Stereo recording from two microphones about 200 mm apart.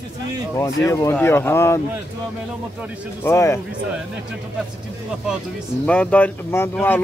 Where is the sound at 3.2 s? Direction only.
15° left (ahead or behind).